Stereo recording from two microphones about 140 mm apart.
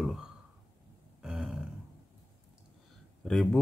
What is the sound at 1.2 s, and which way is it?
Grunt, 5° right (ahead or behind).